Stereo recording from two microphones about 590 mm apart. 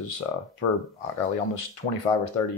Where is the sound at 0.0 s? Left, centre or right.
Left.